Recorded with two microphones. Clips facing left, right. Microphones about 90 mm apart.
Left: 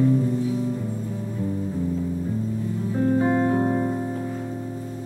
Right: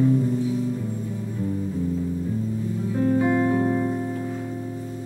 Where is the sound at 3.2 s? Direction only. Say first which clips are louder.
Even; 30° left (ahead or behind).